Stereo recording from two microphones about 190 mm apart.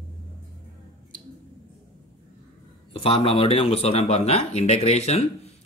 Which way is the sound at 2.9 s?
30° left (ahead or behind).